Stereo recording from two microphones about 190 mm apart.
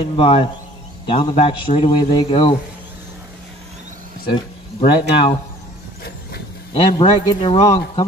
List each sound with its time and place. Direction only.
0.0 s a man's voice: 30° left (ahead or behind)
4.3 s speech: 25° left (ahead or behind)
6.7 s a man's voice: 30° left (ahead or behind)